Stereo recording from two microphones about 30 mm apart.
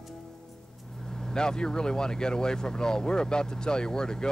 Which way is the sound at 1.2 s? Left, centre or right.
Left.